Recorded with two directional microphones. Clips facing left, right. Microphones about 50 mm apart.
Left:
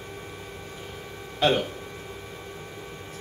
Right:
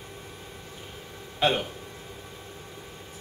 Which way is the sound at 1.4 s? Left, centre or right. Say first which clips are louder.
Left 2 dB; centre.